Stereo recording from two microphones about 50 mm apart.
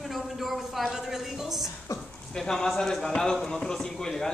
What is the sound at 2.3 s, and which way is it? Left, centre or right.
Speech, centre.